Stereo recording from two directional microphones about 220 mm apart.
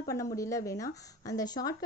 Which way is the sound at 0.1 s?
15° left (ahead or behind).